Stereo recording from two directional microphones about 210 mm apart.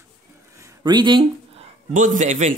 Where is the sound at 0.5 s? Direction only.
15° right (ahead or behind); by 2.6 s 35° right (ahead or behind).